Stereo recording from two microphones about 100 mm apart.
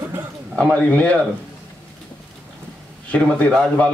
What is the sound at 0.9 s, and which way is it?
Speech, 10° left (ahead or behind).